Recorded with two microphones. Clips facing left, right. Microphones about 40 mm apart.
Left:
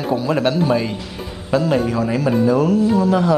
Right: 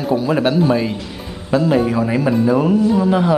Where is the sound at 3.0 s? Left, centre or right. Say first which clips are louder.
Right 1 dB; centre.